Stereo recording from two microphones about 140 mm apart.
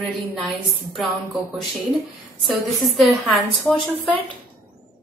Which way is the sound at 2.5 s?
Centre (ahead or behind).